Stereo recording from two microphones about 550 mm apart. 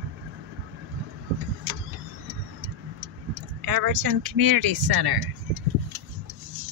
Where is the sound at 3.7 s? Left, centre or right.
Right.